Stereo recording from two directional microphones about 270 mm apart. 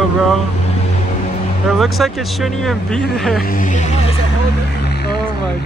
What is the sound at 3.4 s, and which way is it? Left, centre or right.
Speech, left.